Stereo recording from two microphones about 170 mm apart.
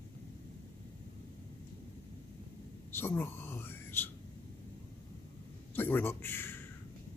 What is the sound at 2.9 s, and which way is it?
Whispering, 15° left (ahead or behind).